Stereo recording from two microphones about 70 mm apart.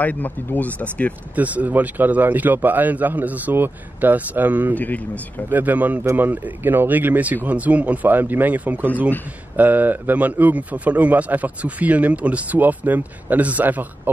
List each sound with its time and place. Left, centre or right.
0.0 s speech: left
1.3 s a man's voice: right
4.7 s speech: left
5.5 s a man's voice: right